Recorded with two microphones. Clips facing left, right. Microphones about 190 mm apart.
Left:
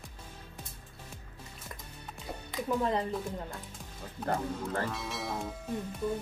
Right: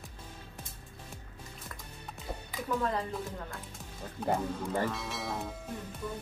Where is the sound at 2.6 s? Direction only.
20° left (ahead or behind).